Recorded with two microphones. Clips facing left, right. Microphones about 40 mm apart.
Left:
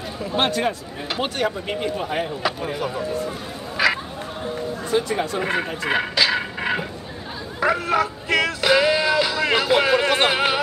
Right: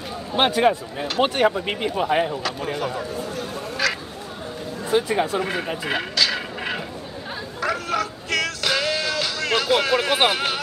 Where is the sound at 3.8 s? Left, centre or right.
Centre.